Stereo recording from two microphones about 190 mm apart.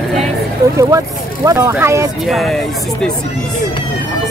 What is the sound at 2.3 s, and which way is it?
Speech, centre (ahead or behind).